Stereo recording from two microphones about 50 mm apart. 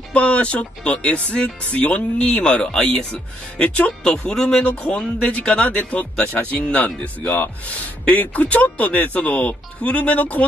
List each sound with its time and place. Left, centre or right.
0.1 s speech: left
4.6 s speech: left
7.7 s speech: left